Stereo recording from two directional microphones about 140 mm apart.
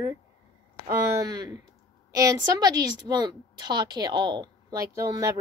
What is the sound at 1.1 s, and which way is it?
A woman's voice, 30° right (ahead or behind).